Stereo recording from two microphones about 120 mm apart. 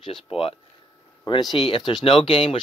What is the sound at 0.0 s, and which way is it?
Speech, 45° left (ahead or behind).